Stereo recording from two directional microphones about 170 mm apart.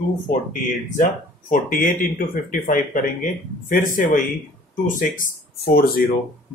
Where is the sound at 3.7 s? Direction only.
50° left (ahead or behind).